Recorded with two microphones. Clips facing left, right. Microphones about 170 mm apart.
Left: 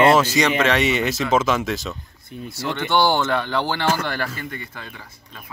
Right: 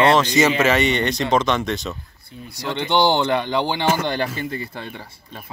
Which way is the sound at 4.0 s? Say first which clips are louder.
Right 4 dB; 25° right (ahead or behind).